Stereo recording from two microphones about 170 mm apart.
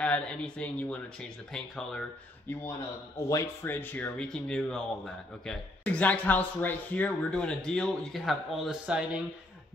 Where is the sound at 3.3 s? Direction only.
15° left (ahead or behind); by 9.0 s 5° right (ahead or behind).